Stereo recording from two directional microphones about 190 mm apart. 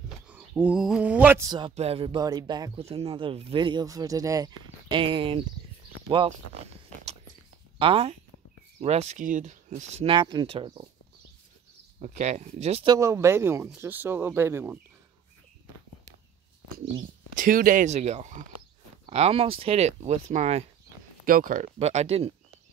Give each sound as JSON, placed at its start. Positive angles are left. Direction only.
{"t": 0.3, "sound": "a sound", "side_deg": -5}
{"t": 1.5, "sound": "speech", "side_deg": -30}
{"t": 7.8, "sound": "speech", "side_deg": -30}
{"t": 12.0, "sound": "speech", "side_deg": -40}
{"t": 12.9, "sound": "speech", "side_deg": -15}
{"t": 17.4, "sound": "speech", "side_deg": -45}
{"t": 21.7, "sound": "speech", "side_deg": -35}